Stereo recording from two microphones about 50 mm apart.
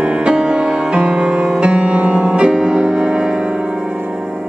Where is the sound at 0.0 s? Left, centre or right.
Right.